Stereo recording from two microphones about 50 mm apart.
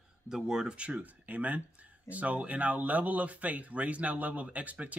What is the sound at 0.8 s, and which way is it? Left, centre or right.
Speech, right.